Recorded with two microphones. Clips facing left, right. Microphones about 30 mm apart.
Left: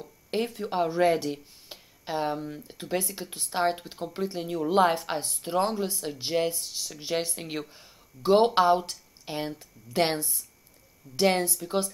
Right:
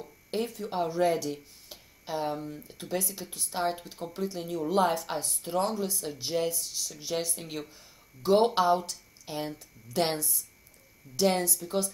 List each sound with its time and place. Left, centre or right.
0.3 s speech: left